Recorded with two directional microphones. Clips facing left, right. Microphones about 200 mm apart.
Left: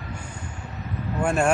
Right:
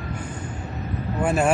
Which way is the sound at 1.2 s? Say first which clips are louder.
Right 1 dB; 5° right (ahead or behind).